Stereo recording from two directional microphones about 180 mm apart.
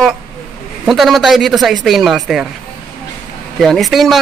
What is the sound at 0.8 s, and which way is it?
A man's voice, centre (ahead or behind).